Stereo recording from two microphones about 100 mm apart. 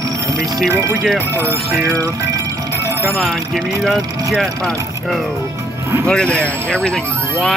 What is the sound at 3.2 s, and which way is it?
Speech, centre (ahead or behind).